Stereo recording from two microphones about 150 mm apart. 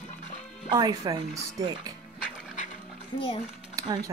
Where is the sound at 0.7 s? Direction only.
25° right (ahead or behind).